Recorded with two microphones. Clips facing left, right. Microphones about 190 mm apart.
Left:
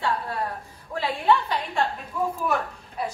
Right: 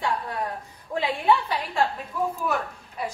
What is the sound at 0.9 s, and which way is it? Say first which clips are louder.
Speech: even; 15° right (ahead or behind).